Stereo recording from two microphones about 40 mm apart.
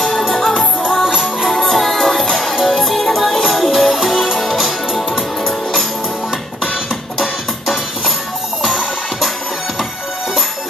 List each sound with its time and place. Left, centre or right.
0.3 s music: centre
1.0 s music: centre
1.5 s music: centre